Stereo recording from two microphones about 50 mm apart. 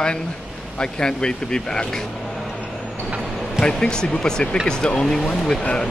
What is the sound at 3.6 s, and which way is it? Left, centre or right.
Speech, centre.